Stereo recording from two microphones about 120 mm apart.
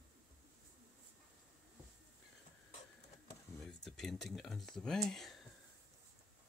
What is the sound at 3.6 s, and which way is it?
Speech, 5° left (ahead or behind).